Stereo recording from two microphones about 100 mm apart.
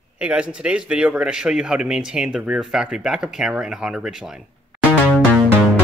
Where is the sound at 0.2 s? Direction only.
10° right (ahead or behind).